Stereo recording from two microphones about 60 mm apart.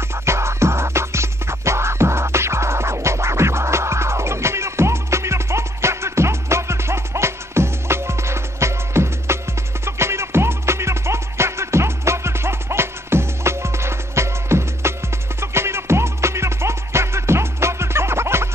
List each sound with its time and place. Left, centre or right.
0.2 s music: right